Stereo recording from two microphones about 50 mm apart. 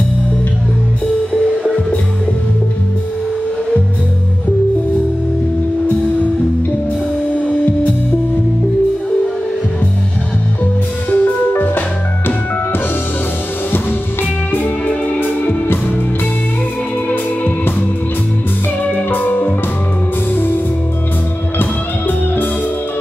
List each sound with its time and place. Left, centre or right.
7.4 s music: left
11.1 s music: left
15.1 s music: left
19.0 s music: left